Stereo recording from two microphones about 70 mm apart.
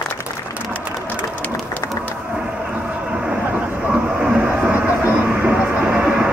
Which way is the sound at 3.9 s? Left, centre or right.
Centre.